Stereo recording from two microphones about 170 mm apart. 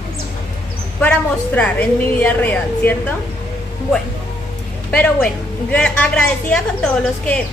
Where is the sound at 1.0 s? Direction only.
10° left (ahead or behind).